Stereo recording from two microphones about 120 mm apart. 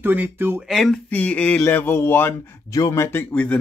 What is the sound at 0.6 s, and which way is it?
Speech, centre (ahead or behind).